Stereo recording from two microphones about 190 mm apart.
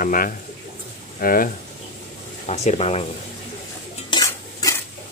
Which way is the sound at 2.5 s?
35° left (ahead or behind).